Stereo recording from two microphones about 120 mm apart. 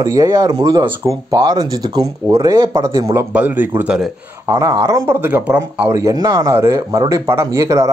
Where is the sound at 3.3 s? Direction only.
15° right (ahead or behind).